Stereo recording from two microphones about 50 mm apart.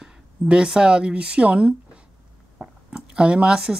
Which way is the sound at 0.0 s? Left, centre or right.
Centre.